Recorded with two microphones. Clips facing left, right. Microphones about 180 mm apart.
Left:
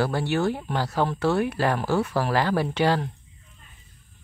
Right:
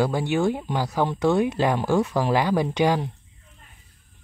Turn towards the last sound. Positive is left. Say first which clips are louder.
# right 1 dB
turn(degrees=-15)  # may be behind; listen again after turning